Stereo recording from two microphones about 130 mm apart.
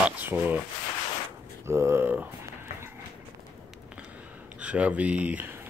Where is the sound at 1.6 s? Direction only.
20° right (ahead or behind).